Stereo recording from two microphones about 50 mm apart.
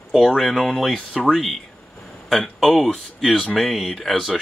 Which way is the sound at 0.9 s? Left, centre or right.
Left.